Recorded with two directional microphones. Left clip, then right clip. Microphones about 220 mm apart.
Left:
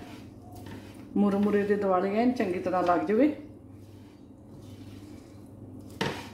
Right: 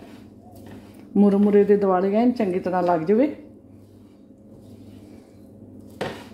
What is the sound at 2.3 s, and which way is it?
Speech, 40° right (ahead or behind).